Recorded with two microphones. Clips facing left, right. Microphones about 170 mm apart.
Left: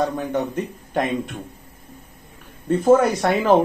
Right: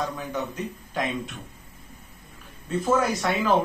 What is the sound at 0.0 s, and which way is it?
A man's voice, 55° left (ahead or behind).